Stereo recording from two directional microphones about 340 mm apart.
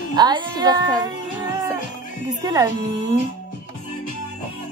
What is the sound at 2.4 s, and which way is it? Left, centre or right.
Speech, centre.